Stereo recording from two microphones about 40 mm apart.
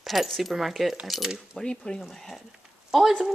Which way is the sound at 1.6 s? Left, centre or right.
Centre.